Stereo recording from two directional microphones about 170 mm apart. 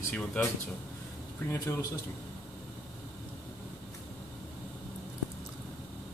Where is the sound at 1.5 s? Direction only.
15° left (ahead or behind).